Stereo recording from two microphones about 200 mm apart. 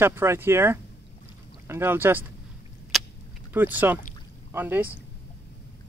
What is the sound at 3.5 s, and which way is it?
Speech, 10° right (ahead or behind).